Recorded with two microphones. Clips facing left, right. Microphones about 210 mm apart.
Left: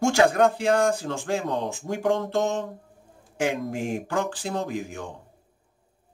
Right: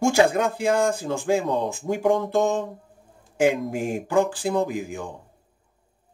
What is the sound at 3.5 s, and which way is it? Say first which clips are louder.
Speech: right 3 dB; 50° right (ahead or behind).